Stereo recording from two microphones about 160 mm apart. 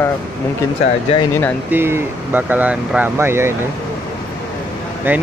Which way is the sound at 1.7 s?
15° right (ahead or behind).